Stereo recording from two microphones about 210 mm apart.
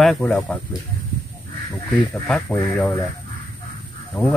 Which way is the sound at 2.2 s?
5° left (ahead or behind).